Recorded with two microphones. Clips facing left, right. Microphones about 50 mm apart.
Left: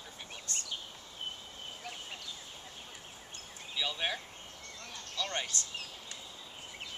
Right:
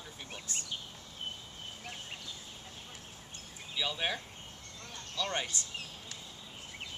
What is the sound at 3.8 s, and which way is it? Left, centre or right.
Speech, centre.